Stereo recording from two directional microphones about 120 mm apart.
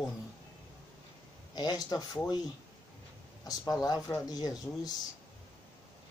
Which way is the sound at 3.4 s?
30° left (ahead or behind).